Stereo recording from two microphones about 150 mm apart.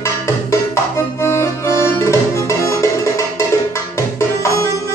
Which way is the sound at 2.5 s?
20° left (ahead or behind).